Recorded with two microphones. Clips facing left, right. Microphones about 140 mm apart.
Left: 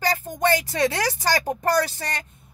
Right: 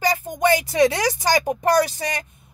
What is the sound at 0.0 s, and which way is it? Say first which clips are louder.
A woman's voice: right 3 dB; 15° right (ahead or behind).